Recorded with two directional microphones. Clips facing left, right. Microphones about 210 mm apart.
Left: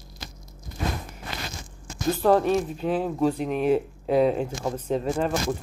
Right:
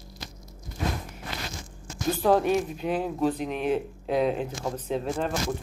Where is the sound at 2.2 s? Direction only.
5° right (ahead or behind).